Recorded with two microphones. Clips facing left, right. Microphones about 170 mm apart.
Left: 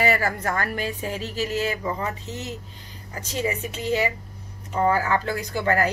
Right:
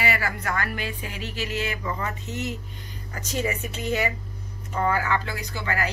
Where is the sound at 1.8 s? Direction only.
25° left (ahead or behind).